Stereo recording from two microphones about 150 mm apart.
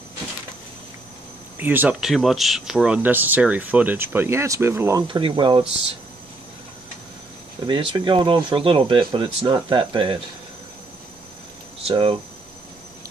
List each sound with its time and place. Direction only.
1.6 s speech: 10° right (ahead or behind)
5.0 s speech: 35° right (ahead or behind)
7.6 s speech: 30° right (ahead or behind)
11.8 s speech: 35° right (ahead or behind)